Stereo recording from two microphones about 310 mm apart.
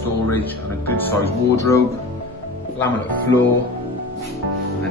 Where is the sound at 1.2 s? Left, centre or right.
Centre.